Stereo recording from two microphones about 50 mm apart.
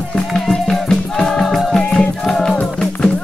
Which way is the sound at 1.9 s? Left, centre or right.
Centre.